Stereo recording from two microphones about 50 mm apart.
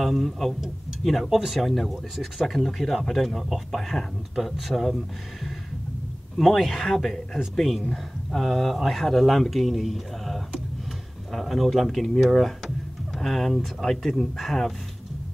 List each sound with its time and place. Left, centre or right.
0.0 s speech: centre
6.3 s speech: centre